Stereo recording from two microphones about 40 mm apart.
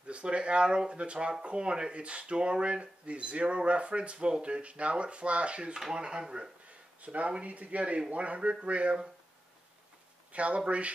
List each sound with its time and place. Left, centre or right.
0.0 s speech: right
7.0 s speech: right
10.3 s speech: right